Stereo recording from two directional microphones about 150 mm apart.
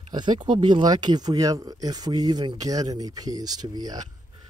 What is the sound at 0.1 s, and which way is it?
Speech, 30° right (ahead or behind).